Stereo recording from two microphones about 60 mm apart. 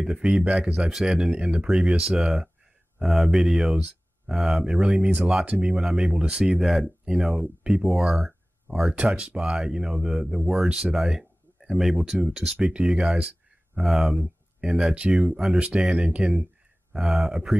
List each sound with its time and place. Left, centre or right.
0.0 s speech: centre
1.7 s speech: centre
3.7 s a sound: centre
4.4 s speech: centre
6.5 s speech: centre
8.9 s speech: centre
13.7 s speech: centre
16.9 s speech: centre